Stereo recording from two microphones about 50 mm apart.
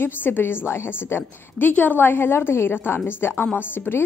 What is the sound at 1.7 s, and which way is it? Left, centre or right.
A woman's voice, left.